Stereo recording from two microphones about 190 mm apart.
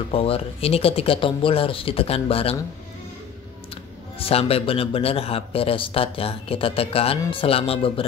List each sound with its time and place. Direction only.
0.1 s speech: 30° left (ahead or behind)
3.7 s speech: 30° left (ahead or behind)